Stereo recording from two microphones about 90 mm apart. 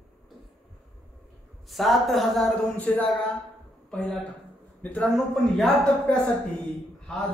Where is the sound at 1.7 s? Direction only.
Centre (ahead or behind).